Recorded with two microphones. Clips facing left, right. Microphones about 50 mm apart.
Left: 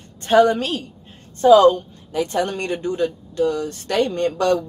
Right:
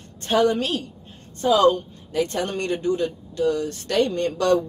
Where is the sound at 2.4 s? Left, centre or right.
Left.